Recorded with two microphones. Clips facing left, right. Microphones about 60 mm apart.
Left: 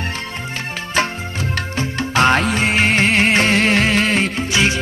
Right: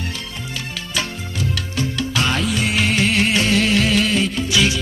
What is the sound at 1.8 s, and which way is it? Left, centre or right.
Music, left.